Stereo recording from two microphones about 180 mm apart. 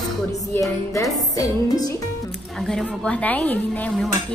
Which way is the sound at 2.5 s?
5° left (ahead or behind).